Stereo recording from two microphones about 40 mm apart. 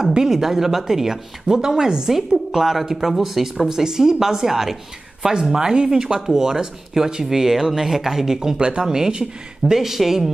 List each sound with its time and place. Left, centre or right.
0.1 s speech: centre
7.3 s speech: centre
8.5 s speech: right; by 10.3 s centre